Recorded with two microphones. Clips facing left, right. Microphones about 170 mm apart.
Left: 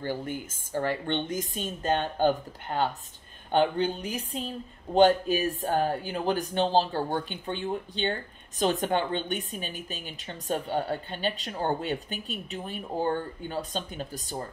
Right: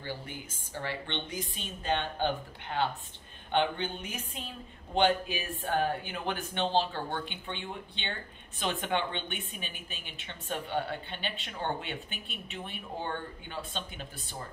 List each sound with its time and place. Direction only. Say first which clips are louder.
0.0 s a woman's voice: left 8 dB; 50° left (ahead or behind)